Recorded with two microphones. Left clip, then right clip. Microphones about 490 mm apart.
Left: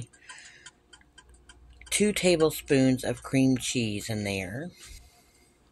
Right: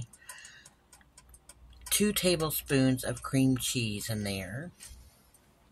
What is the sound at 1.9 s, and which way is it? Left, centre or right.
Speech, right.